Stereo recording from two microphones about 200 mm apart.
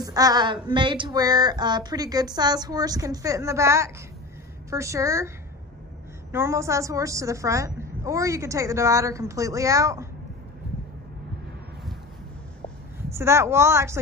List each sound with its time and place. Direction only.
0.0 s a sound: 20° right (ahead or behind)
4.6 s a woman's voice: 15° right (ahead or behind)
6.3 s a woman's voice: 15° right (ahead or behind)
13.1 s a woman's voice: 15° right (ahead or behind)